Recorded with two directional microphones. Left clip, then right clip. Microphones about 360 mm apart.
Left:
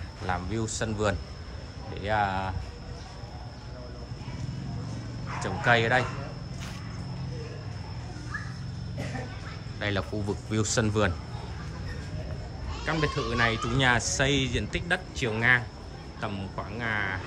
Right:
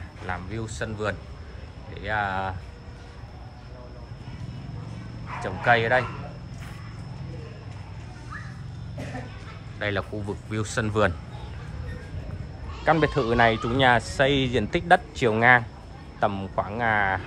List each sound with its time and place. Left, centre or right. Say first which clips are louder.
0.3 s speech: left 2 dB; centre
5.4 s speech: right 3 dB; centre
9.8 s speech: right 3 dB; centre
12.8 s speech: right 8 dB; centre